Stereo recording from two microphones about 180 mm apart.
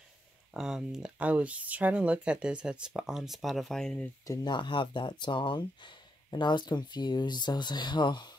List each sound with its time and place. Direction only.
0.5 s speech: 5° right (ahead or behind)
4.3 s speech: 25° left (ahead or behind)